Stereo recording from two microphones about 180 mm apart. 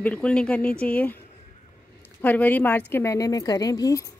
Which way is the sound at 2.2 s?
10° left (ahead or behind).